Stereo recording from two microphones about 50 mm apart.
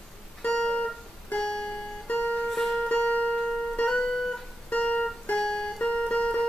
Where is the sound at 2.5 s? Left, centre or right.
Centre.